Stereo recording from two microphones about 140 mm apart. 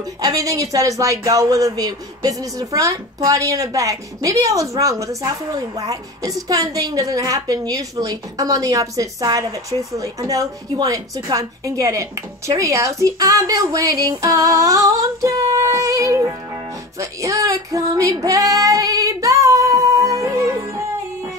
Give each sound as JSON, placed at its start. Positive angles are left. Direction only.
{"t": 0.2, "sound": "speech", "side_deg": -25}
{"t": 17.0, "sound": "female singing", "side_deg": -25}